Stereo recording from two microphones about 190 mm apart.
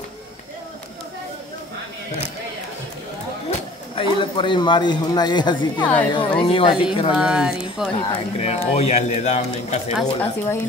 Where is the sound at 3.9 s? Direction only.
25° left (ahead or behind).